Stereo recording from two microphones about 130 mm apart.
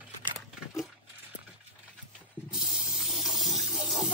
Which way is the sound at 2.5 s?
Centre (ahead or behind).